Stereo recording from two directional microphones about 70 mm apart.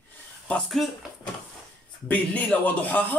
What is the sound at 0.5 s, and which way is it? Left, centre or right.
Speech, left.